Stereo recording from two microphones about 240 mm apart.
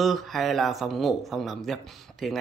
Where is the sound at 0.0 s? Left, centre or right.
Centre.